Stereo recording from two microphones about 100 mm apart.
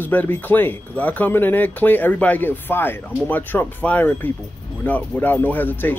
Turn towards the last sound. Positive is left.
turn(degrees=20)  # may be behind; listen again after turning